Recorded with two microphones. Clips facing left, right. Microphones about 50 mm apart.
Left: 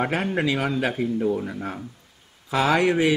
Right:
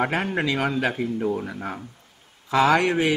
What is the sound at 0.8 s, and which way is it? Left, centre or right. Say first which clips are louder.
Speech: left 1 dB; centre.